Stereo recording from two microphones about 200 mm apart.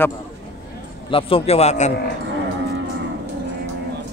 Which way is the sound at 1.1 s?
25° left (ahead or behind).